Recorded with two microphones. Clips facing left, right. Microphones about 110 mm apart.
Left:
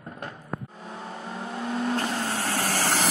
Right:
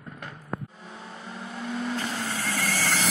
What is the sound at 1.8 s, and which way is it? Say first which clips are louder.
Vehicle: left 4 dB; 50° left (ahead or behind).